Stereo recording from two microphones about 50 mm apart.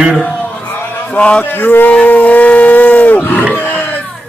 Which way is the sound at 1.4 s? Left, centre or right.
Left.